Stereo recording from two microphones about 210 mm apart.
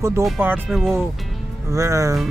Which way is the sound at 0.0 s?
10° right (ahead or behind).